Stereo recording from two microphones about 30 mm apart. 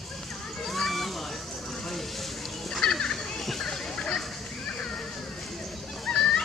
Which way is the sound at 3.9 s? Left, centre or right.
Left.